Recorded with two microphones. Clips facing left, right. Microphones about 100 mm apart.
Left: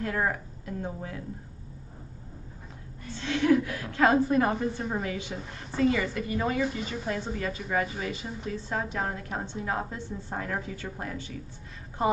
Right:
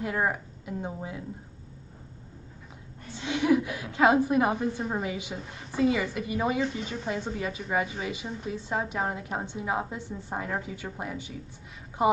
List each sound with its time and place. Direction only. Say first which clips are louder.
0.0 s a woman's voice: right 1 dB; 15° right (ahead or behind)
3.1 s a woman's voice: left 1 dB; 15° right (ahead or behind)
6.6 s a woman's voice: even; centre (ahead or behind)
7.3 s a woman's voice: even; 15° right (ahead or behind)